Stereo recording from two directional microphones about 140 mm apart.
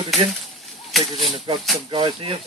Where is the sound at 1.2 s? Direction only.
40° right (ahead or behind).